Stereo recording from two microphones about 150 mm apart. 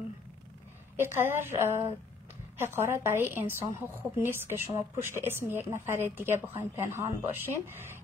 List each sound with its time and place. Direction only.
0.9 s speech: 15° right (ahead or behind)